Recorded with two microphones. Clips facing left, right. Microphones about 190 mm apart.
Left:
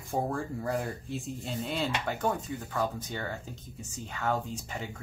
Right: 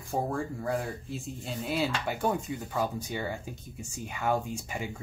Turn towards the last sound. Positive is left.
turn(degrees=-10)  # may be behind; listen again after turning